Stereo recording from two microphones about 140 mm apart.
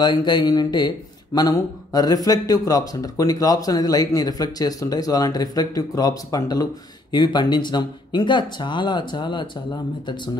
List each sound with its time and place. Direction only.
0.0 s speech: 30° left (ahead or behind)